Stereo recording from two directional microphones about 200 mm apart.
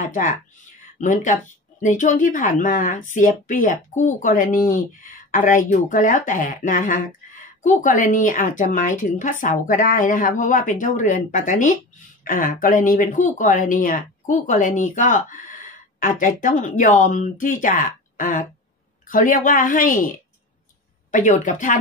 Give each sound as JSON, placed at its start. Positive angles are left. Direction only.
{"t": 0.9, "sound": "a woman's voice", "side_deg": 40}